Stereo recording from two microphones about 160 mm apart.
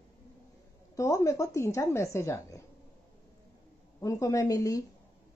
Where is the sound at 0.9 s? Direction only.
20° left (ahead or behind).